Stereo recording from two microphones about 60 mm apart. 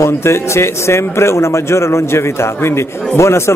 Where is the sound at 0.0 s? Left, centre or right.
Left.